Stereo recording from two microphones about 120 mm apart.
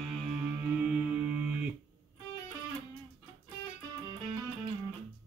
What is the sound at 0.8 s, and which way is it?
Music, 10° right (ahead or behind).